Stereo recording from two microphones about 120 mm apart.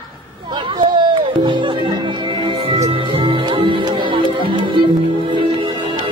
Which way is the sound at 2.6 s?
55° right (ahead or behind).